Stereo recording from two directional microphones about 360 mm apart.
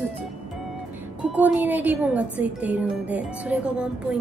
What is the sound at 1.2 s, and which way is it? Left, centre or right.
Speech, centre.